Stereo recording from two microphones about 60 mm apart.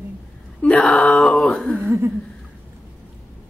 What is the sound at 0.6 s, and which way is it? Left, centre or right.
A man's voice, centre.